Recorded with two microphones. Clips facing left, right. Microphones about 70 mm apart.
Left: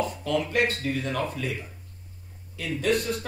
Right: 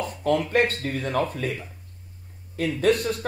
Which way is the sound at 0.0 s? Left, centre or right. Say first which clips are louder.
Right 3 dB; right.